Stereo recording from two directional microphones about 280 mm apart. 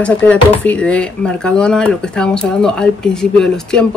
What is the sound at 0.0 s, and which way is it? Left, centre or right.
Speech, centre.